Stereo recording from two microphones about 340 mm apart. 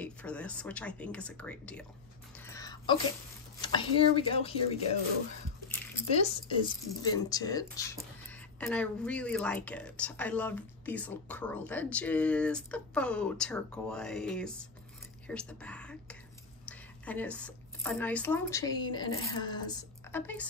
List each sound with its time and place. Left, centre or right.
0.0 s speech: centre
2.3 s a sound: centre
3.6 s speech: centre
6.1 s a woman's voice: centre